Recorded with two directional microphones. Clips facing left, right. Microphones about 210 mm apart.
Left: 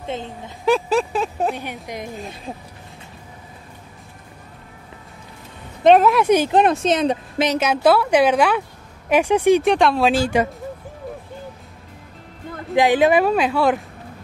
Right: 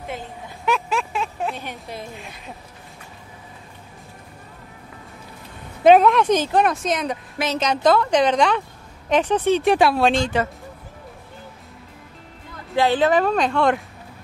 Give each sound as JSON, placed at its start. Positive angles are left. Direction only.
{"t": 0.7, "sound": "speech", "side_deg": 35}
{"t": 1.5, "sound": "a woman's voice", "side_deg": 15}
{"t": 2.1, "sound": "speech", "side_deg": 35}
{"t": 5.9, "sound": "a woman's voice", "side_deg": 5}
{"t": 6.5, "sound": "a woman's voice", "side_deg": 25}
{"t": 7.5, "sound": "a woman's voice", "side_deg": 5}
{"t": 9.6, "sound": "speech", "side_deg": -5}
{"t": 12.7, "sound": "a woman's voice", "side_deg": 15}